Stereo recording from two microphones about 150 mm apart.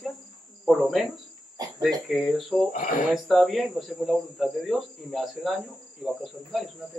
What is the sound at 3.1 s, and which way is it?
Speech, centre (ahead or behind).